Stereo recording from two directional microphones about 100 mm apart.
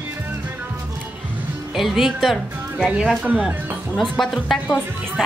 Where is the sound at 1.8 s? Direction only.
5° right (ahead or behind).